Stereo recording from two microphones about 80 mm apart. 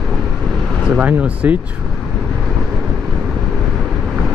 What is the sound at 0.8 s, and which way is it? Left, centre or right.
Speech, centre.